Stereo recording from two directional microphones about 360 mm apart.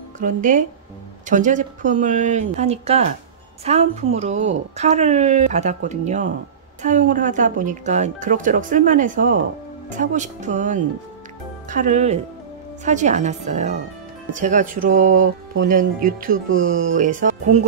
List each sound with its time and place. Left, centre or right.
0.2 s speech: right
16.8 s speech: right